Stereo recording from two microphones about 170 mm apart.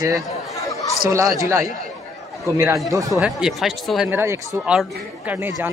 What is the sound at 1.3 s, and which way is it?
A man's voice, 15° right (ahead or behind).